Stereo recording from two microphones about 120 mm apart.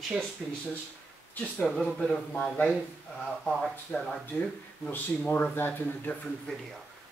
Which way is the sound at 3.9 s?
10° left (ahead or behind).